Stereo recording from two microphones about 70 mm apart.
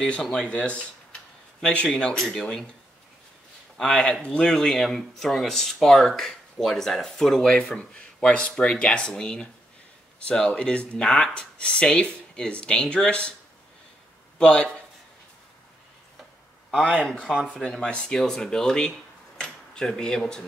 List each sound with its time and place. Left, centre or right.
0.0 s speech: centre
3.7 s speech: centre
14.4 s speech: centre
16.8 s speech: centre